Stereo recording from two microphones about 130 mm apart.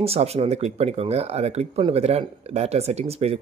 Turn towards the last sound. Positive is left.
turn(degrees=-50)  # may be behind; listen again after turning